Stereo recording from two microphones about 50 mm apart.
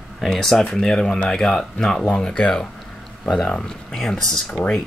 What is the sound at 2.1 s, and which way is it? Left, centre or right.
Speech, centre.